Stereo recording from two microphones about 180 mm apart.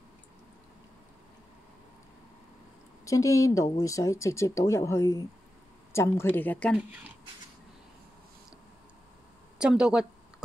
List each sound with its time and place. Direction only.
3.1 s speech: 20° left (ahead or behind)
6.8 s speech: 10° right (ahead or behind)
9.6 s speech: 5° right (ahead or behind)